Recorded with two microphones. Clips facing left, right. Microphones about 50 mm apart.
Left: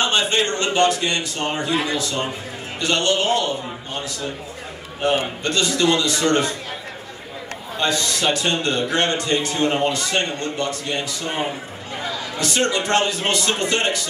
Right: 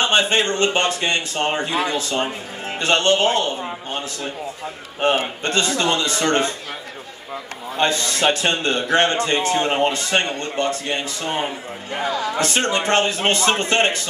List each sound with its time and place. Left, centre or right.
0.1 s a man's voice: right
5.0 s a man's voice: right
7.8 s a man's voice: right